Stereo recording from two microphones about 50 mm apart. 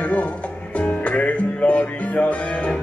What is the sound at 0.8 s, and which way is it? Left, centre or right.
Music, left.